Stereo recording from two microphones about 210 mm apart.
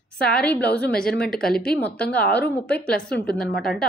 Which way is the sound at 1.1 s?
5° left (ahead or behind).